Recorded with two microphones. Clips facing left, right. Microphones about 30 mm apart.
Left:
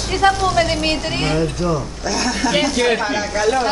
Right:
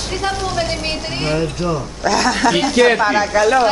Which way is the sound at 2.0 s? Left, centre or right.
Right.